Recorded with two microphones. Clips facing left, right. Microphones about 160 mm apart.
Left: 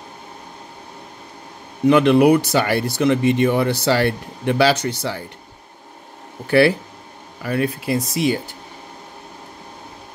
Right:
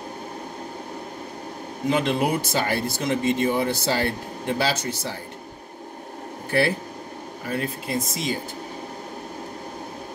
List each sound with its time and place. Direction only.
1.9 s speech: 70° left (ahead or behind)
6.4 s speech: 75° left (ahead or behind)